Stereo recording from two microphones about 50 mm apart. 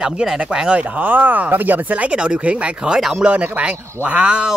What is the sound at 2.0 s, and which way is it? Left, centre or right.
Speech, right.